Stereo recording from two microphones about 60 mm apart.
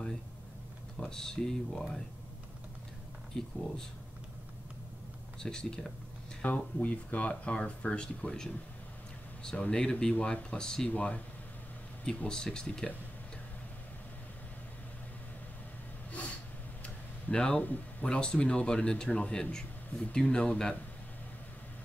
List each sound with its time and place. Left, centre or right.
0.9 s a man's voice: centre
3.3 s a man's voice: centre
5.4 s a man's voice: centre
6.4 s speech: left
9.6 s a man's voice: centre
10.9 s a man's voice: left
16.1 s a sound: left
18.0 s a man's voice: centre